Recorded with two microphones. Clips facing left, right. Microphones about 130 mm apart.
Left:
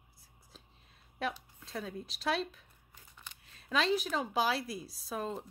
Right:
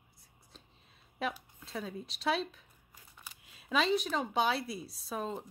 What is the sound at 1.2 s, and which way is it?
A woman's voice, centre (ahead or behind).